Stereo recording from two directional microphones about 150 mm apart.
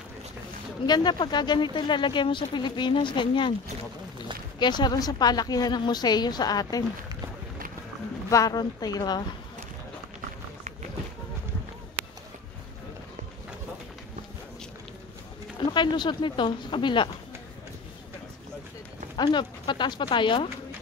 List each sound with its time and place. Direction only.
0.8 s speech: 30° left (ahead or behind)
4.6 s a woman's voice: 30° left (ahead or behind)
8.3 s a woman's voice: 25° left (ahead or behind)
15.7 s speech: 30° left (ahead or behind)
19.1 s speech: 30° left (ahead or behind)